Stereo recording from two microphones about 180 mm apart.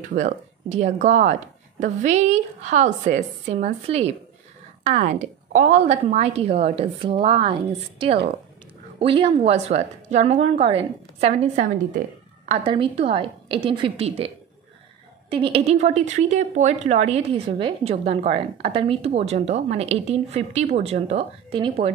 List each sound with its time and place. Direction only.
0.1 s speech: 40° right (ahead or behind)
12.4 s speech: 30° right (ahead or behind)